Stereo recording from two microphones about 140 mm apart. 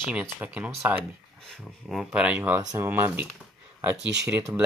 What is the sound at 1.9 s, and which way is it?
Speech, 5° right (ahead or behind).